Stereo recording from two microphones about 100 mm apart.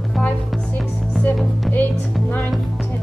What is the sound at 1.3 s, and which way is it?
Speech, centre (ahead or behind).